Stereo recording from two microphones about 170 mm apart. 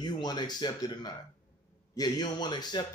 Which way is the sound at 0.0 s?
25° left (ahead or behind).